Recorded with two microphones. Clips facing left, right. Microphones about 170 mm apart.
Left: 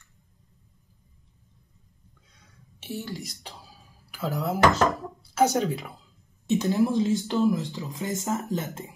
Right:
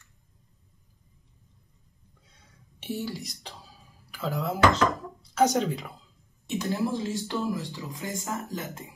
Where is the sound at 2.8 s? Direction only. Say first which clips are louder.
Right 2 dB; 10° right (ahead or behind).